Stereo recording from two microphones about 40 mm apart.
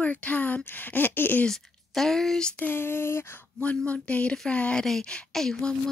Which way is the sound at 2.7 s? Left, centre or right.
Left.